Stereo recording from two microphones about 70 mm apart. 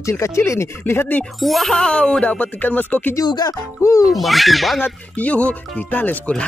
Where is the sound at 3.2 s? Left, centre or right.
Left.